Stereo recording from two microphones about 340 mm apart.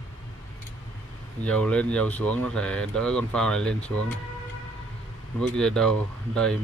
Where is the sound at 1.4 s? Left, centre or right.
Centre.